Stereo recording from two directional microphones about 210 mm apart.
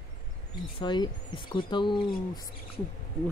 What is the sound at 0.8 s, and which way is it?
Speech, 20° left (ahead or behind).